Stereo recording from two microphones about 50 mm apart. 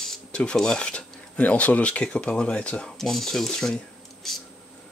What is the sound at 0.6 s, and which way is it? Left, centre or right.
Speech, centre.